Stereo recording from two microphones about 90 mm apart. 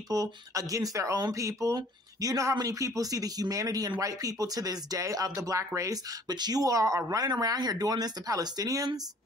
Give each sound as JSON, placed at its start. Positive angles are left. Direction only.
{"t": 0.1, "sound": "speech", "side_deg": -40}
{"t": 7.2, "sound": "speech", "side_deg": -45}